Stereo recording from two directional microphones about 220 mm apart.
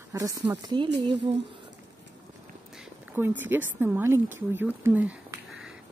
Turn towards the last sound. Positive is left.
turn(degrees=-5)  # may be behind; listen again after turning